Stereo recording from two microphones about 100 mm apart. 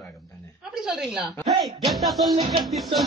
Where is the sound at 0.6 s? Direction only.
5° right (ahead or behind).